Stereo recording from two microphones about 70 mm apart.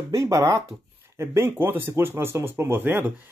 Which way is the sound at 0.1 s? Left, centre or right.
Right.